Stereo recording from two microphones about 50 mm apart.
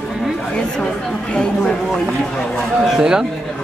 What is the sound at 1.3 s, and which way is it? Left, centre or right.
Speech, centre.